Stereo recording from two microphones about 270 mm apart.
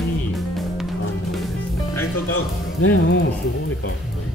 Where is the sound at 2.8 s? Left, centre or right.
Left.